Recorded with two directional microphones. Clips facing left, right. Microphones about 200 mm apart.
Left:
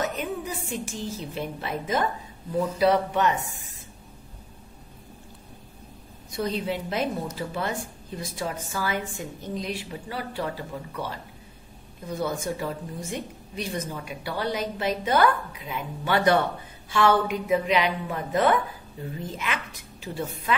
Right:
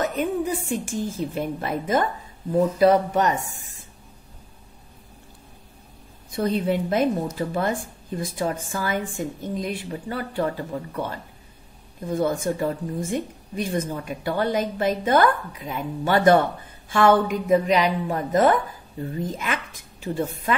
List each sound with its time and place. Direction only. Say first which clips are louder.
0.0 s a woman's voice: right 5 dB; 50° right (ahead or behind)
6.3 s a woman's voice: right 5 dB; 55° right (ahead or behind)
12.1 s a woman's voice: right 5 dB; 50° right (ahead or behind)